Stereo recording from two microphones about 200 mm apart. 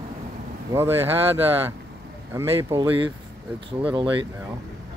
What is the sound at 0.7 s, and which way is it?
Speech, 10° right (ahead or behind).